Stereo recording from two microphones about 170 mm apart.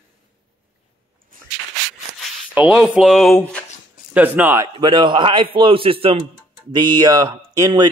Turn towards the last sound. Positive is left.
turn(degrees=-20)  # may be behind; listen again after turning